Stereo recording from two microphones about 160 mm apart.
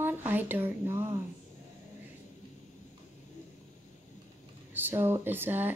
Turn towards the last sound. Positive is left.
turn(degrees=-10)  # may be behind; listen again after turning